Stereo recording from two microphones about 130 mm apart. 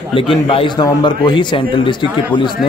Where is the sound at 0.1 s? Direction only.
45° left (ahead or behind).